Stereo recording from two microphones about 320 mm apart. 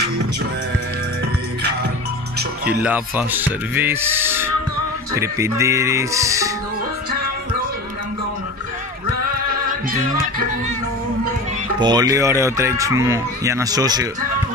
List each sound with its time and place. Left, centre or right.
2.6 s speech: centre
9.8 s music: right
11.8 s speech: centre